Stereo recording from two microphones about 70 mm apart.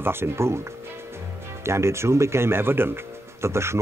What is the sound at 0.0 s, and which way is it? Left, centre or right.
Speech, right.